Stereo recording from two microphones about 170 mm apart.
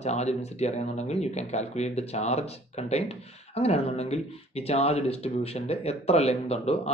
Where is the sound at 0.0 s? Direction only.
40° left (ahead or behind).